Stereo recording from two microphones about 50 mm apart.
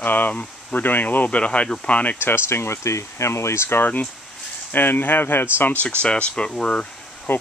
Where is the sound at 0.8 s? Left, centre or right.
Left.